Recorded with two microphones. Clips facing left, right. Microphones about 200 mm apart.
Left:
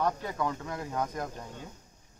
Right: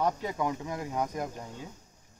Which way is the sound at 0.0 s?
15° right (ahead or behind).